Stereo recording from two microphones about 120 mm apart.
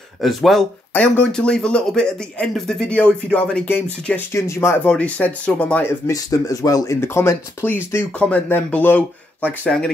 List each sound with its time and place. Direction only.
0.2 s speech: centre (ahead or behind)
0.9 s speech: 10° left (ahead or behind)
4.8 s speech: 10° left (ahead or behind)
6.0 s speech: 30° left (ahead or behind); by 9.9 s 5° left (ahead or behind)